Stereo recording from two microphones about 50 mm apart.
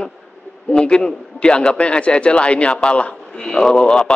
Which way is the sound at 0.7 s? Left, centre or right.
Centre.